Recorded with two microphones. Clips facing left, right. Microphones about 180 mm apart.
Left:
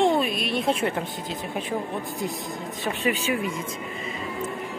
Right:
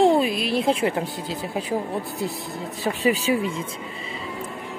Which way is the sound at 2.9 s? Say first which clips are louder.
Right 4 dB; 35° right (ahead or behind).